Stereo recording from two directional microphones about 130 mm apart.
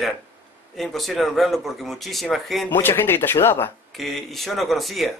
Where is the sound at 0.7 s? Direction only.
Centre (ahead or behind).